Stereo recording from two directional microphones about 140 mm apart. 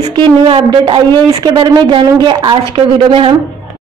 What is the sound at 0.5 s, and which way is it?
Speech, 40° right (ahead or behind).